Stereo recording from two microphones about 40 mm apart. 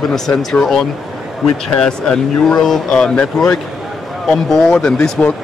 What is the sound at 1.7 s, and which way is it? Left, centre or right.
A man's voice, centre.